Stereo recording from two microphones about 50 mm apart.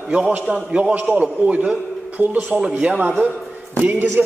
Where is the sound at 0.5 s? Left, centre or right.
Right.